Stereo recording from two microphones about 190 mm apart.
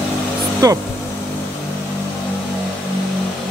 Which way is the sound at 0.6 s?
20° right (ahead or behind).